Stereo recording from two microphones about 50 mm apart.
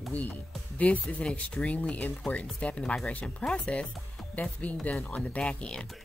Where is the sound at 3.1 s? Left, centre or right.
Left.